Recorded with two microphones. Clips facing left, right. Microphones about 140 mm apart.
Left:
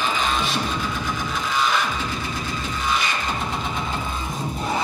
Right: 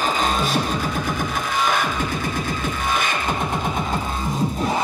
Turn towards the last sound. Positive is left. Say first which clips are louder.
# right 1 dB
turn(degrees=-50)  # may be behind; listen again after turning